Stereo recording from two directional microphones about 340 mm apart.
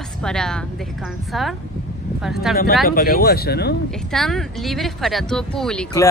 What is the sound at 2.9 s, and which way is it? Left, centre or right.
Speech, left.